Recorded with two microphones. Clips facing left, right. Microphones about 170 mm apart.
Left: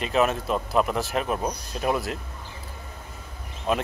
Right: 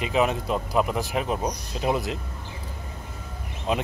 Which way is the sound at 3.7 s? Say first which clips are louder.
Left 1 dB; 20° right (ahead or behind).